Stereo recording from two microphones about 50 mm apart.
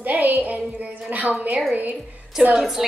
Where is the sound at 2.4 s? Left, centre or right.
Centre.